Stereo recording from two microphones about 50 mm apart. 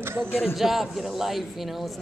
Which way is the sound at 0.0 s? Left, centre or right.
Right.